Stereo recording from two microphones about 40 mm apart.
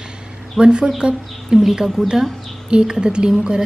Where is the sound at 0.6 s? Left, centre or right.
Right.